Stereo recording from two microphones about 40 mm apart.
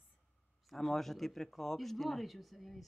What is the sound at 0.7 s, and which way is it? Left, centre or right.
Speech, centre.